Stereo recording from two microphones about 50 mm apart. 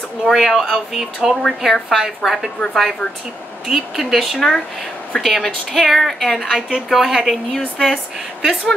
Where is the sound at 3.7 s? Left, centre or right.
Centre.